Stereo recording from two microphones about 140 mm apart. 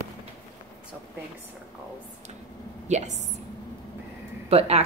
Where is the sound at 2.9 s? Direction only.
55° right (ahead or behind).